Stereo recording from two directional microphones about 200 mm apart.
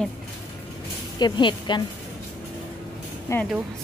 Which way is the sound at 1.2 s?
25° left (ahead or behind).